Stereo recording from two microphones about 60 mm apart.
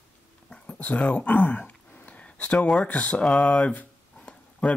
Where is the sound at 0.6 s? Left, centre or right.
Left.